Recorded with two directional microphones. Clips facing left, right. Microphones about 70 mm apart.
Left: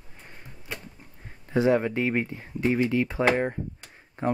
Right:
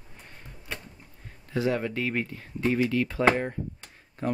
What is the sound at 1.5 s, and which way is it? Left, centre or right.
Speech, left.